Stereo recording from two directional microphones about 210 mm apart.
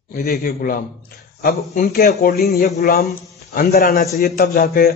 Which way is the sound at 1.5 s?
45° left (ahead or behind).